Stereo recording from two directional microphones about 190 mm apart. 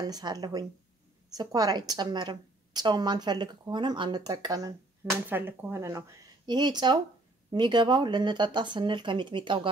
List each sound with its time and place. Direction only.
0.0 s a woman's voice: 20° right (ahead or behind)